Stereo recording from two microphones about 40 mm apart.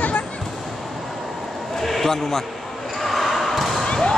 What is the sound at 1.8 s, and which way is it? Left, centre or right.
Speech, centre.